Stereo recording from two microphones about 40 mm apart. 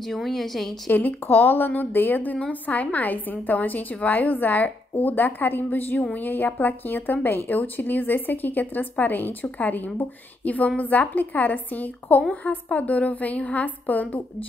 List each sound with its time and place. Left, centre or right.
0.0 s a woman's voice: centre
0.8 s a woman's voice: left
2.6 s a woman's voice: left